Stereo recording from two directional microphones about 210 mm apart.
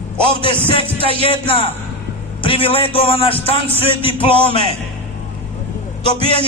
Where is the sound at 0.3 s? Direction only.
25° right (ahead or behind).